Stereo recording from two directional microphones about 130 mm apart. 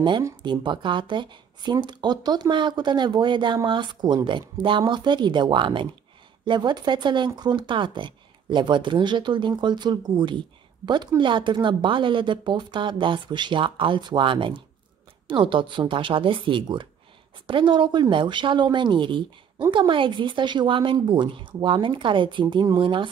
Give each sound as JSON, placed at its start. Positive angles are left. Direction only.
{"t": 0.4, "sound": "a woman's voice", "side_deg": -35}